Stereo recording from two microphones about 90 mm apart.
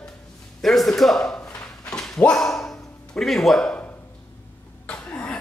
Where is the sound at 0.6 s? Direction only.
5° left (ahead or behind).